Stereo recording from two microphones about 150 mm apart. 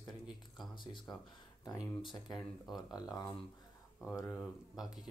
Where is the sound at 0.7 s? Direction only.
30° left (ahead or behind).